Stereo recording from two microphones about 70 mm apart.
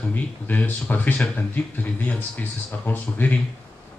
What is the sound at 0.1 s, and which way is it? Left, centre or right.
A man's voice, left.